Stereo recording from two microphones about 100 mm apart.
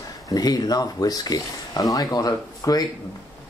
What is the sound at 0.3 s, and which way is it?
Speech, 40° left (ahead or behind).